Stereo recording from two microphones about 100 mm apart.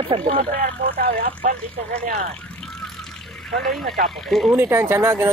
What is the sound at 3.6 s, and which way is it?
Speech, 5° left (ahead or behind).